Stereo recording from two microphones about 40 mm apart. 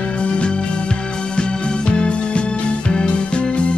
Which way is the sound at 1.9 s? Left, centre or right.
Left.